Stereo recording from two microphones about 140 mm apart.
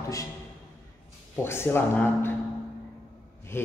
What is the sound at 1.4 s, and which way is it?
Speech, 15° left (ahead or behind).